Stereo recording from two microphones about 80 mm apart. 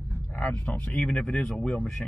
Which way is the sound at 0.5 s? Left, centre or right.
Centre.